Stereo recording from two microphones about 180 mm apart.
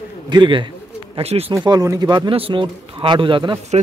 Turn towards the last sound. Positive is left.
turn(degrees=-25)  # may be behind; listen again after turning